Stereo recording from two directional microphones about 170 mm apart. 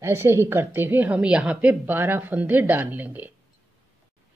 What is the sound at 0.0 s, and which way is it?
Speech, 15° right (ahead or behind).